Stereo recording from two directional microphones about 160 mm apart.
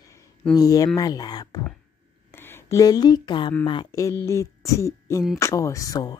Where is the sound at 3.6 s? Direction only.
30° left (ahead or behind).